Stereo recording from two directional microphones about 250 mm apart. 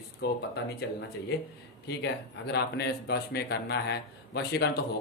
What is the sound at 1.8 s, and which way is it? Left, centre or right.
A man's voice, left.